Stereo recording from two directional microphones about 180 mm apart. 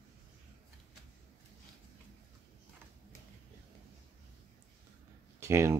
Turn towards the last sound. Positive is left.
turn(degrees=-15)  # may be behind; listen again after turning